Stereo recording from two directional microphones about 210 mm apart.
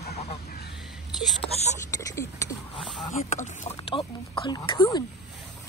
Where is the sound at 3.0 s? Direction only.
35° left (ahead or behind).